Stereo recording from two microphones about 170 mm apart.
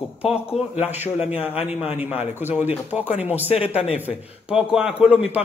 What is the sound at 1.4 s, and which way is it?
Speech, 35° left (ahead or behind).